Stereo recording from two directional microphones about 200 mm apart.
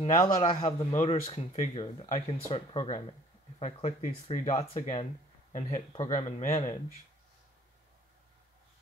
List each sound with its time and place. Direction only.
0.0 s a man's voice: 25° left (ahead or behind)
1.0 s a man's voice: 30° left (ahead or behind)